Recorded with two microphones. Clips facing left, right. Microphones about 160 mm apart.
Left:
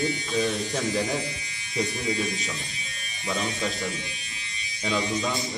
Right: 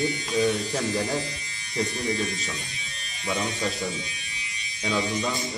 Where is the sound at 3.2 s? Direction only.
20° right (ahead or behind).